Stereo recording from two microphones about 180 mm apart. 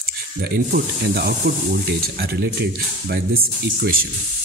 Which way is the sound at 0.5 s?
60° right (ahead or behind).